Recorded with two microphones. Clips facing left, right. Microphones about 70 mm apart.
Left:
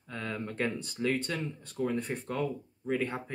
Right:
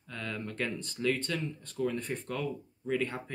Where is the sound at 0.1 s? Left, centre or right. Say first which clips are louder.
Left 2 dB; left.